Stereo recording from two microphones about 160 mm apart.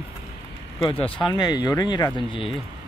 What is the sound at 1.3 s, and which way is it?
Speech, 25° left (ahead or behind).